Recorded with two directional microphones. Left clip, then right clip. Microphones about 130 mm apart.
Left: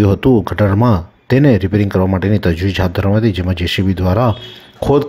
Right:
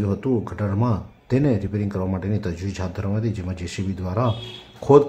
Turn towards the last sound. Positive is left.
turn(degrees=45)  # may be behind; listen again after turning